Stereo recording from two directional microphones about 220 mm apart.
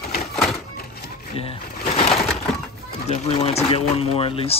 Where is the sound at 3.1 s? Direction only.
25° left (ahead or behind).